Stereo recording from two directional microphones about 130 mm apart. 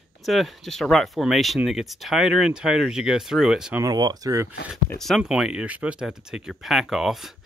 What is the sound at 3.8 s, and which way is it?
Speech, 30° right (ahead or behind).